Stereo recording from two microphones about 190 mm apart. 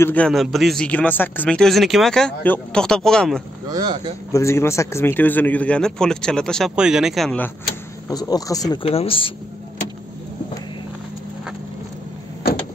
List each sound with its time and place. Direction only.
0.0 s a man's voice: 5° left (ahead or behind)
3.6 s speech: 20° right (ahead or behind)
4.3 s a man's voice: 15° left (ahead or behind)
8.1 s speech: 20° left (ahead or behind)
8.8 s speech: 30° left (ahead or behind)